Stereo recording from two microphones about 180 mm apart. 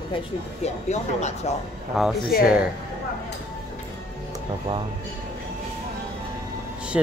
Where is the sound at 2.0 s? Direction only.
Centre (ahead or behind).